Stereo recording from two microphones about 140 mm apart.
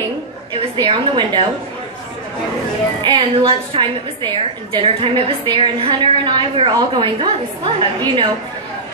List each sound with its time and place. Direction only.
0.5 s a woman's voice: 35° right (ahead or behind)
3.0 s a woman's voice: 35° right (ahead or behind)